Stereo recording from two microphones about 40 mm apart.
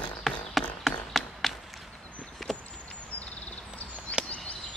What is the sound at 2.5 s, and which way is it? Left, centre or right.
Chop, centre.